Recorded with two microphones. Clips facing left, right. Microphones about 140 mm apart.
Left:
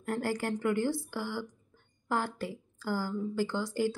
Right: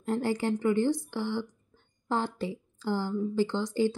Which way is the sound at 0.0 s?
20° right (ahead or behind).